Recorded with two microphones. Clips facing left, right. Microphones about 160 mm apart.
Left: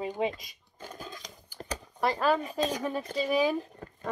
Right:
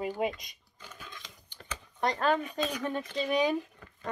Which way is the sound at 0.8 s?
35° left (ahead or behind).